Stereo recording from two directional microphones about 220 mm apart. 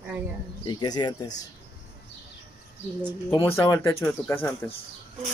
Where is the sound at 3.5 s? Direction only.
15° left (ahead or behind).